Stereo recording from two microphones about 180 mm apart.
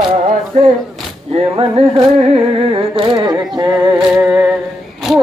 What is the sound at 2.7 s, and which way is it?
Humming, 25° right (ahead or behind).